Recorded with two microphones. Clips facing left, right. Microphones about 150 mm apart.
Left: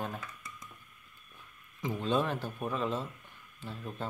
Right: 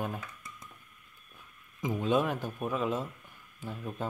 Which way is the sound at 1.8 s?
10° right (ahead or behind).